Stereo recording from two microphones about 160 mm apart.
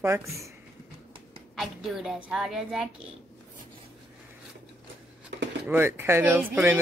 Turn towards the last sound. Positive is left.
turn(degrees=-10)  # may be behind; listen again after turning